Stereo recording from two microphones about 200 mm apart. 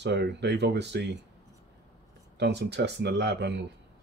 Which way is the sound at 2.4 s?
60° right (ahead or behind).